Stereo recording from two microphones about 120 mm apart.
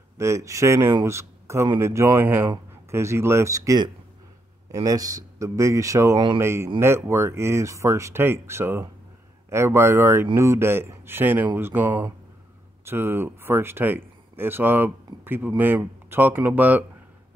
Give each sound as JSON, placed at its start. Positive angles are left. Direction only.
{"t": 0.2, "sound": "speech", "side_deg": -25}